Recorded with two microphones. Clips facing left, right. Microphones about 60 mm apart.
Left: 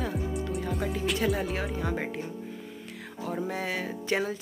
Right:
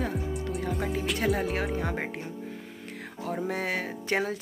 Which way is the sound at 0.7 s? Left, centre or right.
Centre.